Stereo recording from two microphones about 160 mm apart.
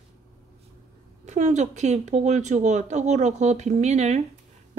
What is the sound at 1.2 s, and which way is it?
Speech, 45° right (ahead or behind).